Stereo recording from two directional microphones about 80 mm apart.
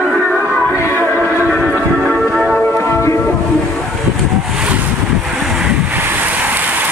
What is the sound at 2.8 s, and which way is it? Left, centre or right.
Music, left.